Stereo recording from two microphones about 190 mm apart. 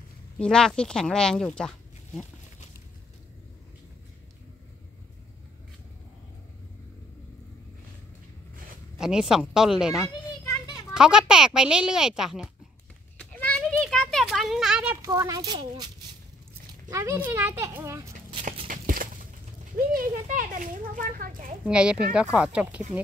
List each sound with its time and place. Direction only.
0.4 s speech: 5° left (ahead or behind)
8.9 s speech: 5° right (ahead or behind)
10.0 s children playing: 15° left (ahead or behind)
10.9 s speech: 5° right (ahead or behind)
13.2 s a sound: 5° left (ahead or behind)
15.0 s a child's voice: 15° right (ahead or behind)
16.9 s speech: 15° right (ahead or behind)
18.7 s a sound: 45° right (ahead or behind)
19.9 s a child's voice: 50° right (ahead or behind)
21.6 s speech: 5° right (ahead or behind)